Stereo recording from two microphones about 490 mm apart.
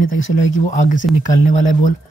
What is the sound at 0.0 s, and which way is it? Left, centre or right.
Speech, centre.